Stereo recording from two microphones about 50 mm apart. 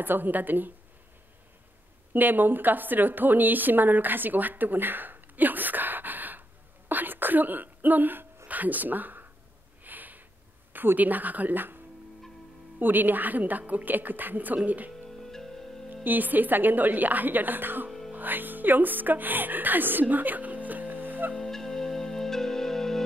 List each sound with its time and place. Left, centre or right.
0.0 s a woman's voice: right
2.1 s a woman's voice: right
6.9 s throat clearing: right
8.5 s speech: right
9.8 s a sound: right
10.7 s a woman's voice: right
15.2 s music: centre
15.9 s a woman's voice: right
21.4 s music: centre